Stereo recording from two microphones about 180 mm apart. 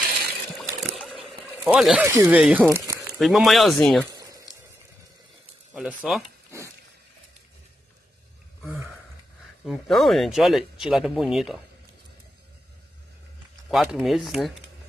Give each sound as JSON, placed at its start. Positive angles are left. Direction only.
{"t": 1.6, "sound": "speech", "side_deg": -5}
{"t": 3.2, "sound": "speech", "side_deg": 0}
{"t": 4.1, "sound": "a sound", "side_deg": -20}
{"t": 5.7, "sound": "speech", "side_deg": 0}
{"t": 6.5, "sound": "a sound", "side_deg": -15}
{"t": 9.7, "sound": "speech", "side_deg": 0}
{"t": 13.7, "sound": "speech", "side_deg": 0}